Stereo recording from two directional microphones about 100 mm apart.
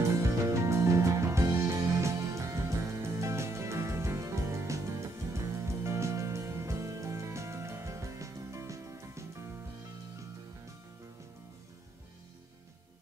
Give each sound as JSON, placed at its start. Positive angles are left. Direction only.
{"t": 0.1, "sound": "music", "side_deg": -30}